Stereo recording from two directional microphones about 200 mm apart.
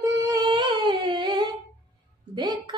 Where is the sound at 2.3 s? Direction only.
20° right (ahead or behind).